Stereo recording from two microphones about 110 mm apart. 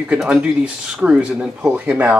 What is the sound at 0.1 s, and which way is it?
Speech, 10° right (ahead or behind).